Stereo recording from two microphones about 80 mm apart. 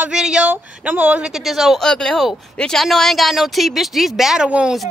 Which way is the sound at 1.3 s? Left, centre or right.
Centre.